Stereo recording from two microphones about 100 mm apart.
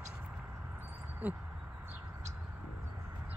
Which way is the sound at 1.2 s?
15° right (ahead or behind).